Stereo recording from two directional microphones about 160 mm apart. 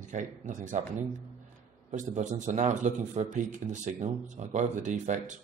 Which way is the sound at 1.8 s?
50° right (ahead or behind).